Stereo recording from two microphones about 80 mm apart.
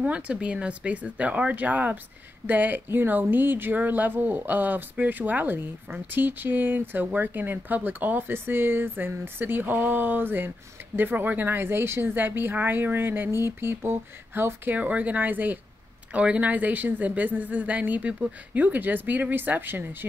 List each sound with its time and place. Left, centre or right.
0.0 s speech: centre